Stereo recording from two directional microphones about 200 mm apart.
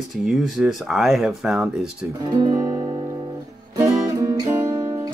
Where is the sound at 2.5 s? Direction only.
20° right (ahead or behind).